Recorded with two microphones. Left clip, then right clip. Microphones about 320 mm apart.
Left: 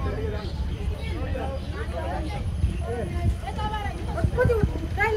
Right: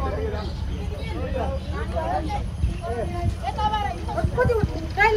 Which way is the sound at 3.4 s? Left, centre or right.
Centre.